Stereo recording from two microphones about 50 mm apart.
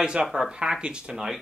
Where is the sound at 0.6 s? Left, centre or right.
Centre.